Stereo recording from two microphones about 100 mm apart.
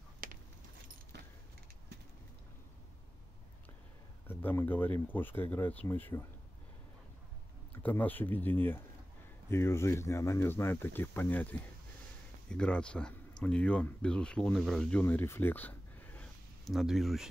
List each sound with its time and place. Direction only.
4.3 s speech: 20° left (ahead or behind)
7.8 s speech: 15° left (ahead or behind)
16.6 s speech: centre (ahead or behind)